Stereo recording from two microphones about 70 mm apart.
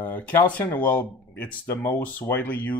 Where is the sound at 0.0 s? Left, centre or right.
Left.